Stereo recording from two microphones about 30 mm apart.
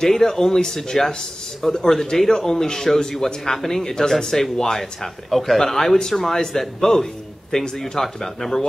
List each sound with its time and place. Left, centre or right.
0.1 s speech: centre